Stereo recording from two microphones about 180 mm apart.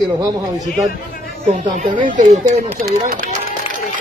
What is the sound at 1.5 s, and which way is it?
Speech, 45° right (ahead or behind).